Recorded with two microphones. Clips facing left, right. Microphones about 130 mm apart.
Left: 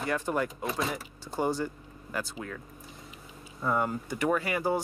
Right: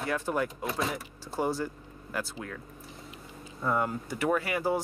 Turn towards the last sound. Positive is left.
turn(degrees=0)  # may be behind; listen again after turning